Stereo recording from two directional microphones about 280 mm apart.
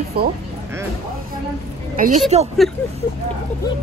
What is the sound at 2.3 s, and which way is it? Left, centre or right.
Speech, right.